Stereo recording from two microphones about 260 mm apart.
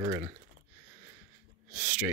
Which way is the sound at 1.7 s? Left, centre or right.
Centre.